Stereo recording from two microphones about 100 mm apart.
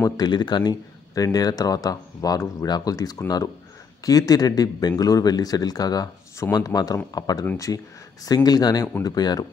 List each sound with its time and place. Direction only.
0.0 s speech: 45° left (ahead or behind)